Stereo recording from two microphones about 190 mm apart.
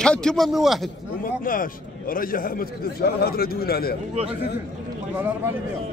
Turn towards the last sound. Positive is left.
turn(degrees=-10)  # may be behind; listen again after turning